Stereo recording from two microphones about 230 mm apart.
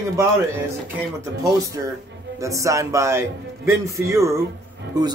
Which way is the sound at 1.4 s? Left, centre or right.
Centre.